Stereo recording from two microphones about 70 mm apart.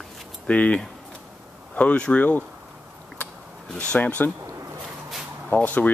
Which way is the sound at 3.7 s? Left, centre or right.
Centre.